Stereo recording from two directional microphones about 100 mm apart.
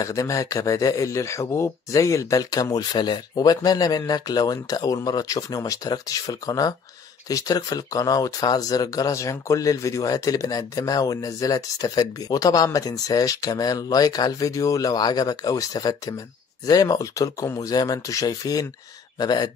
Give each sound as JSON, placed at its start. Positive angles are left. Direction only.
{"t": 0.0, "sound": "speech", "side_deg": 35}